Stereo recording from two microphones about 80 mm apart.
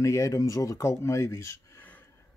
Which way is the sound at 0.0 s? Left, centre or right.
Left.